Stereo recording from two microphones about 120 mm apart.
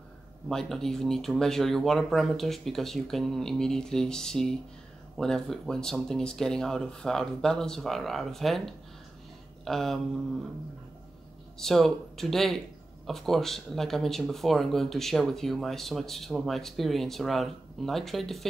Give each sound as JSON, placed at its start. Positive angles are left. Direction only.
{"t": 0.5, "sound": "speech", "side_deg": 5}
{"t": 11.5, "sound": "speech", "side_deg": 0}